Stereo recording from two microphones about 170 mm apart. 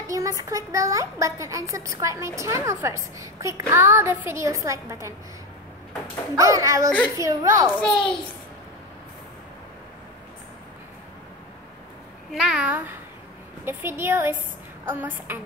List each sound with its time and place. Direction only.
0.0 s a child's voice: 20° right (ahead or behind)
6.3 s a child's voice: 20° right (ahead or behind)
7.8 s a child's voice: 5° left (ahead or behind)
12.3 s a child's voice: 5° right (ahead or behind)